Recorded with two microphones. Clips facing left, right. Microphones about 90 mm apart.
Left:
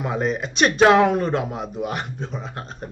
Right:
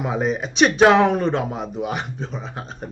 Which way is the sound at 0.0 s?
5° right (ahead or behind).